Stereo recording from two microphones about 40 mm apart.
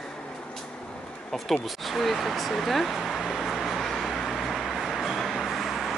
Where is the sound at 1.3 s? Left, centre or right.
Centre.